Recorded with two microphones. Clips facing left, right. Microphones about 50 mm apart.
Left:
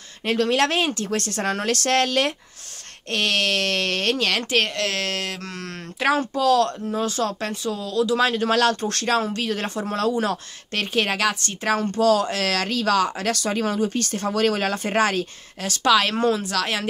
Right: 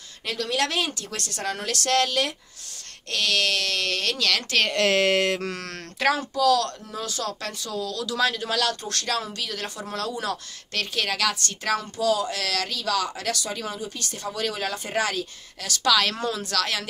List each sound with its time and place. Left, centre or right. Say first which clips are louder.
0.2 s speech: left 6 dB; left
4.7 s speech: right 5 dB; centre
5.4 s mantra: right 2 dB; centre
6.1 s speech: left 5 dB; left
8.4 s speech: left 7 dB; left
11.8 s speech: left 8 dB; left
15.6 s speech: left 3 dB; left